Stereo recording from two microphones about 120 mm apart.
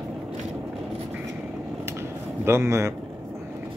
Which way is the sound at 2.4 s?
20° right (ahead or behind).